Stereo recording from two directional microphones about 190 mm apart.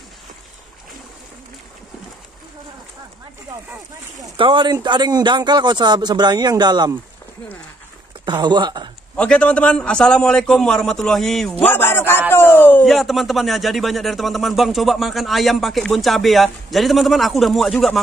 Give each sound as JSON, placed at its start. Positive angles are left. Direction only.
{"t": 4.4, "sound": "a man's voice", "side_deg": -25}
{"t": 8.3, "sound": "a man's voice", "side_deg": -25}
{"t": 9.1, "sound": "speech", "side_deg": 5}
{"t": 11.6, "sound": "a sound", "side_deg": 10}
{"t": 12.3, "sound": "speech", "side_deg": 10}